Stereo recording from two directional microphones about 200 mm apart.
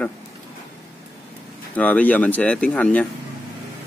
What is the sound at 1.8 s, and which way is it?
Speech, 10° left (ahead or behind).